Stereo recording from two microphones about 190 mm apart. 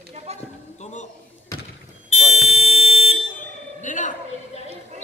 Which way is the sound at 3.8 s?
40° left (ahead or behind).